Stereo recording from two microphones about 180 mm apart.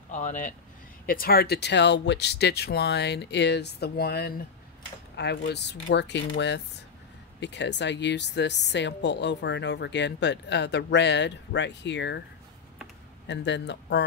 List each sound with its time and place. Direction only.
0.1 s speech: 45° left (ahead or behind)
1.0 s a woman's voice: 55° left (ahead or behind); by 12.2 s 75° left (ahead or behind)
13.3 s a woman's voice: 75° left (ahead or behind)